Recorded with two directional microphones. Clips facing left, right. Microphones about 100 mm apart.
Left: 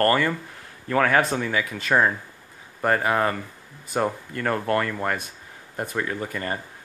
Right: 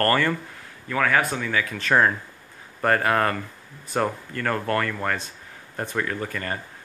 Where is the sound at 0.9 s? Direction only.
35° left (ahead or behind).